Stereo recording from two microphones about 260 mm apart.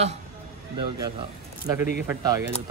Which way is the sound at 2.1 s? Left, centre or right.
Centre.